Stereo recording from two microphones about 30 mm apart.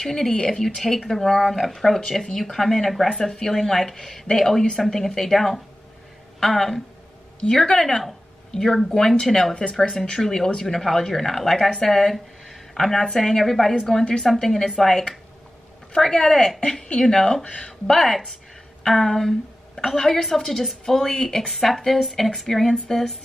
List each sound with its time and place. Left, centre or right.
0.3 s speech: left
0.7 s a woman's voice: centre
8.5 s a woman's voice: centre
8.9 s speech: centre
9.8 s a woman's voice: centre
16.3 s speech: left
17.5 s speech: left
17.8 s a woman's voice: centre
21.6 s a woman's voice: centre